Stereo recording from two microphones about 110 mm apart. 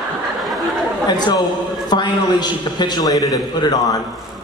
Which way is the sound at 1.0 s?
40° left (ahead or behind).